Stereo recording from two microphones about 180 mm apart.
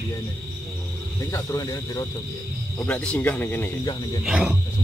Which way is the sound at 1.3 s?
20° left (ahead or behind).